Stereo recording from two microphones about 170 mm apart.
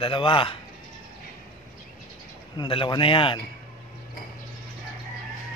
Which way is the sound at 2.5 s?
30° left (ahead or behind).